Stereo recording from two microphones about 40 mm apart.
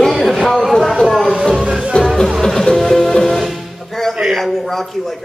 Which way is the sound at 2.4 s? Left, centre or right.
Centre.